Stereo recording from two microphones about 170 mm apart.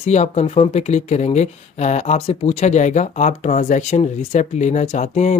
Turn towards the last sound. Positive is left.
turn(degrees=45)  # may be behind; listen again after turning